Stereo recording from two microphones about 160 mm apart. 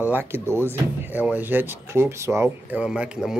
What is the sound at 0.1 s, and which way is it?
A man's voice, 15° right (ahead or behind).